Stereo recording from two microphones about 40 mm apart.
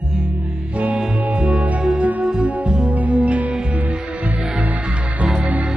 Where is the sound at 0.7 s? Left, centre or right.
Right.